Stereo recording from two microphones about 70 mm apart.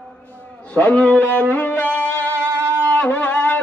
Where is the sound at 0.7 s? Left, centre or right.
Centre.